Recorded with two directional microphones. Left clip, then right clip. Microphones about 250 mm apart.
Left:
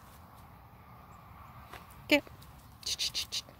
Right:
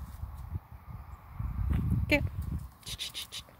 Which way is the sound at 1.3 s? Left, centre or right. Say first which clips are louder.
Right 6 dB; right.